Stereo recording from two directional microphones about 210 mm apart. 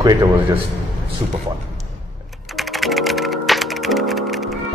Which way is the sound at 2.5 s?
Centre (ahead or behind).